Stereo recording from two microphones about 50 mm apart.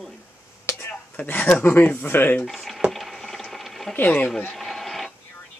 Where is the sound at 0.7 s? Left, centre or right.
Left.